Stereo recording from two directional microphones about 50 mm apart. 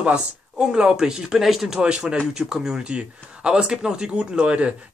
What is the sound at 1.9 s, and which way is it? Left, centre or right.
A woman's voice, right.